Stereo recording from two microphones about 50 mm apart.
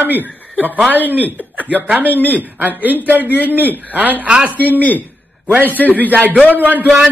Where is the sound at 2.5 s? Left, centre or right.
Right.